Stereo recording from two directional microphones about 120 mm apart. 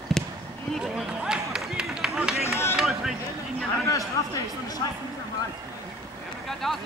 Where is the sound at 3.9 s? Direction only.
25° left (ahead or behind).